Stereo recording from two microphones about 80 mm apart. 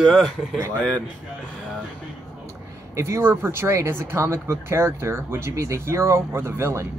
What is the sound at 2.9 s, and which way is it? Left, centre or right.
Speech, right.